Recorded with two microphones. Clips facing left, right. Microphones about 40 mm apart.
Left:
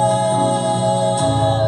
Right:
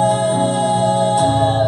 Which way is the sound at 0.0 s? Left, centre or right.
Centre.